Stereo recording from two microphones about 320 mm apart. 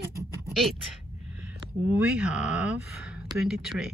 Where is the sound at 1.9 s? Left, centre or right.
Centre.